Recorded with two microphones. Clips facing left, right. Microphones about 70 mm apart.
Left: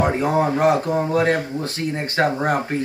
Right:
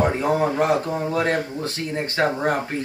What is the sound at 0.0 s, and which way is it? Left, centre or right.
Speech, centre.